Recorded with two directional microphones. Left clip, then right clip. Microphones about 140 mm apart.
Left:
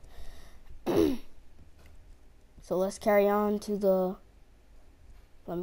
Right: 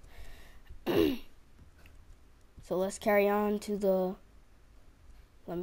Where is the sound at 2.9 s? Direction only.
15° right (ahead or behind).